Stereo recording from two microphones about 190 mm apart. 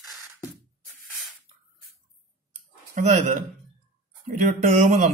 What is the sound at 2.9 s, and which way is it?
Speech, 40° right (ahead or behind).